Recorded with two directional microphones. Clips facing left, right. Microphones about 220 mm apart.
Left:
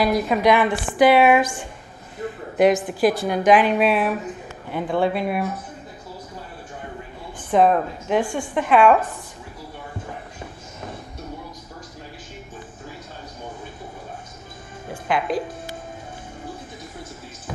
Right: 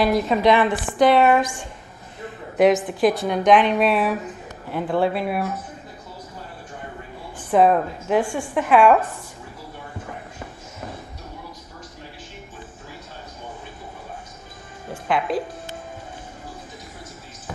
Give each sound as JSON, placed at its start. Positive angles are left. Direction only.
{"t": 0.0, "sound": "a woman's voice", "side_deg": 0}
{"t": 1.4, "sound": "a woman's voice", "side_deg": 0}
{"t": 7.3, "sound": "a woman's voice", "side_deg": 0}
{"t": 10.4, "sound": "shuffle", "side_deg": 0}
{"t": 14.9, "sound": "music", "side_deg": 0}